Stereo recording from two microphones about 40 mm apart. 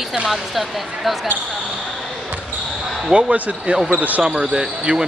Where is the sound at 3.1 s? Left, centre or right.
Right.